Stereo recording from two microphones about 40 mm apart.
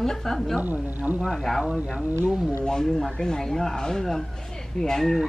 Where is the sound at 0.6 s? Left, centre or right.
Right.